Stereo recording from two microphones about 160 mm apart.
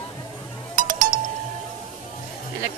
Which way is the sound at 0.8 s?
55° right (ahead or behind).